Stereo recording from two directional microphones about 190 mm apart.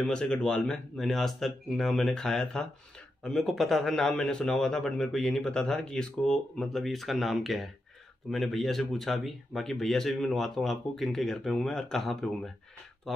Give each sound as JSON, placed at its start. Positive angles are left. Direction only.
{"t": 0.0, "sound": "a man's voice", "side_deg": 5}